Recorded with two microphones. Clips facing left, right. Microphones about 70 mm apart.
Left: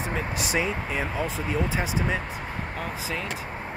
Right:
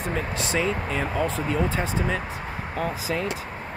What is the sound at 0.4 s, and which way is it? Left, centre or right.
Speech, centre.